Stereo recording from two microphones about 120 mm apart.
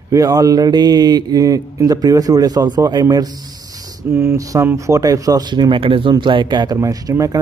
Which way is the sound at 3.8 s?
20° right (ahead or behind).